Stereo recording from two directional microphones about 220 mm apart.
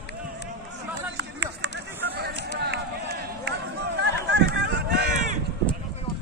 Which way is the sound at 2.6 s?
50° right (ahead or behind).